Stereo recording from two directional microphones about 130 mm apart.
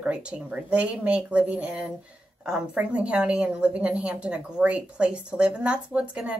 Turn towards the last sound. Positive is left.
turn(degrees=-10)  # may be behind; listen again after turning